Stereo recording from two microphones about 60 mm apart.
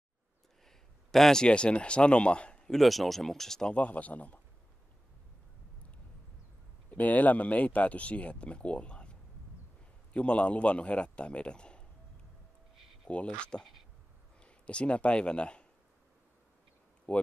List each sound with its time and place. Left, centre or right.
0.7 s speech: centre
2.8 s speech: centre
3.7 s speech: left
6.9 s speech: left
10.1 s speech: centre
13.1 s speech: centre
17.1 s speech: left